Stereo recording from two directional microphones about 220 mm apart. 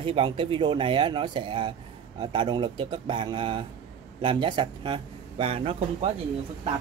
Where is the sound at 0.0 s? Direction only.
25° right (ahead or behind).